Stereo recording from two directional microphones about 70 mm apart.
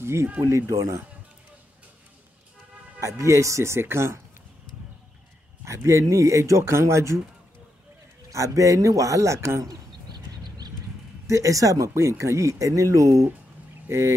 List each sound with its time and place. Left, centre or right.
0.0 s speech: right
3.0 s speech: right
5.7 s speech: right
8.3 s speech: right
10.0 s a sound: right
11.2 s speech: right
13.8 s speech: right